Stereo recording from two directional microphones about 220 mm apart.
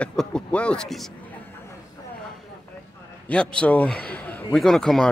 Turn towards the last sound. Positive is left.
turn(degrees=0)  # may be behind; listen again after turning